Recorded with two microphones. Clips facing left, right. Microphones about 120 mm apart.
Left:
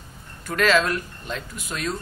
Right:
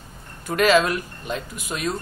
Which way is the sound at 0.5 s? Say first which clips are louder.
Right 3 dB; 15° right (ahead or behind).